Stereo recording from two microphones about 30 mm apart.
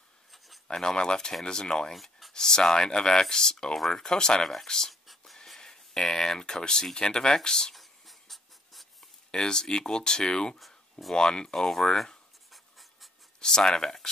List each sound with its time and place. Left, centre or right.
0.7 s speech: left
2.0 s a sound: centre
2.3 s speech: left
5.0 s whispering: centre
5.6 s a sound: centre
6.4 s speech: left
7.7 s writing: centre
9.3 s speech: left
11.5 s speech: centre
12.4 s writing: centre
13.4 s speech: left